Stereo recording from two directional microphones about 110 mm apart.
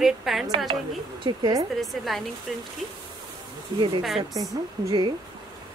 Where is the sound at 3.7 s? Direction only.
40° right (ahead or behind).